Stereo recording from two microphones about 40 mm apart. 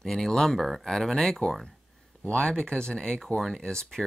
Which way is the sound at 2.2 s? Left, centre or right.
Left.